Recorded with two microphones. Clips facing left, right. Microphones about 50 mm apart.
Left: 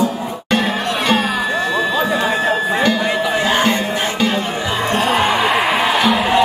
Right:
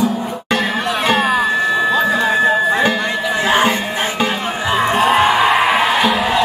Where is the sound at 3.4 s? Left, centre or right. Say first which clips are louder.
Right 4 dB; centre.